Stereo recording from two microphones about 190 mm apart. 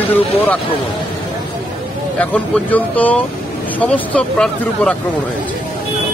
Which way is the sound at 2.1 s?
10° left (ahead or behind).